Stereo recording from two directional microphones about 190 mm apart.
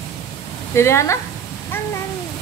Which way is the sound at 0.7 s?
15° left (ahead or behind).